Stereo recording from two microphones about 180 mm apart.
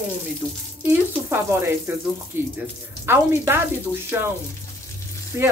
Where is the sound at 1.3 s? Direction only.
15° right (ahead or behind).